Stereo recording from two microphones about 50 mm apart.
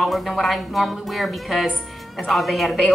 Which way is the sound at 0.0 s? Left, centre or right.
Centre.